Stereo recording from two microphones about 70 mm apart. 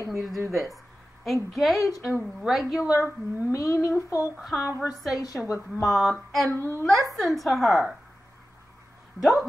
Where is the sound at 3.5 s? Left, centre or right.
Left.